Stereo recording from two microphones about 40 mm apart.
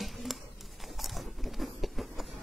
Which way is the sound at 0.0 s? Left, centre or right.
Centre.